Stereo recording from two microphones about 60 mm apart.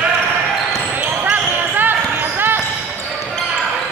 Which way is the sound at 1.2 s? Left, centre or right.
Right.